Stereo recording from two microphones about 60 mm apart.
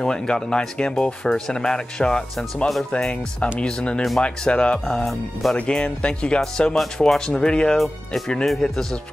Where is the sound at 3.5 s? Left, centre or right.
Centre.